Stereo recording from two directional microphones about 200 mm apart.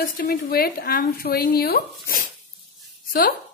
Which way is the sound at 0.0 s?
50° left (ahead or behind).